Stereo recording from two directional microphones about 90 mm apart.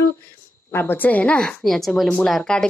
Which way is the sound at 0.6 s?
25° left (ahead or behind).